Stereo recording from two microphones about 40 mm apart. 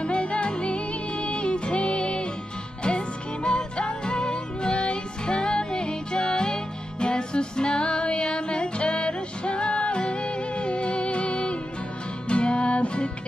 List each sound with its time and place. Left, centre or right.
0.0 s music: left
3.4 s music: left